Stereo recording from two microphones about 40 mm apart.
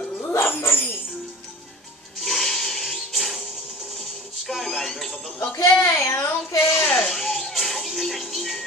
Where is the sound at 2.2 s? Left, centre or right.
Centre.